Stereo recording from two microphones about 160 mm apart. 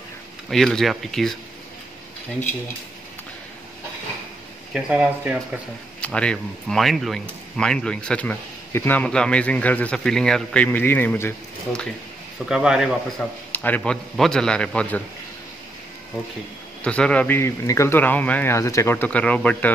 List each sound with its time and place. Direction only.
0.5 s a man's voice: centre (ahead or behind)
4.7 s speech: 5° right (ahead or behind)
5.9 s speech: 5° left (ahead or behind)
12.4 s a man's voice: 5° right (ahead or behind)
13.5 s a man's voice: 10° left (ahead or behind)
16.8 s speech: 5° left (ahead or behind)